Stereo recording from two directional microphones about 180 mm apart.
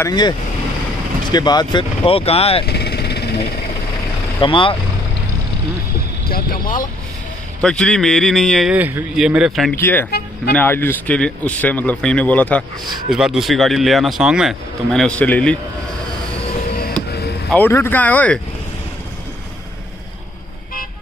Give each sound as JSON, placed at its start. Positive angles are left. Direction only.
{"t": 0.0, "sound": "speech", "side_deg": 25}
{"t": 1.3, "sound": "speech", "side_deg": 20}
{"t": 2.6, "sound": "vehicle", "side_deg": 65}
{"t": 4.4, "sound": "speech", "side_deg": 30}
{"t": 6.2, "sound": "speech", "side_deg": 55}
{"t": 7.6, "sound": "speech", "side_deg": 5}
{"t": 9.8, "sound": "speech", "side_deg": 10}
{"t": 13.1, "sound": "speech", "side_deg": 0}
{"t": 17.1, "sound": "a sound", "side_deg": 65}
{"t": 17.5, "sound": "speech", "side_deg": 10}